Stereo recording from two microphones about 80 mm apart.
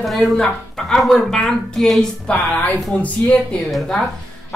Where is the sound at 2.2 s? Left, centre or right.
Left.